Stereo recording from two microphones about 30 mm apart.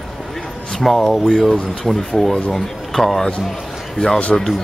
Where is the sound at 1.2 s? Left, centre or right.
Centre.